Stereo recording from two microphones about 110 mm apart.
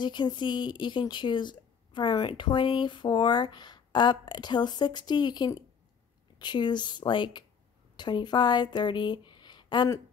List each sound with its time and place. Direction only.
0.0 s a woman's voice: 45° left (ahead or behind)